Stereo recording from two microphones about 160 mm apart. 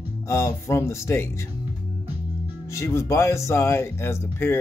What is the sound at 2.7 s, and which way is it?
Speech, 15° left (ahead or behind).